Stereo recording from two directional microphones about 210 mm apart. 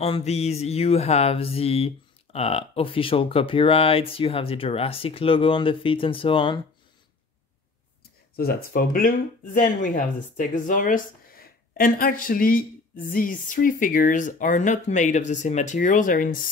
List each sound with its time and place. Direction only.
0.0 s mantra: 30° left (ahead or behind)
8.4 s speech: 45° left (ahead or behind)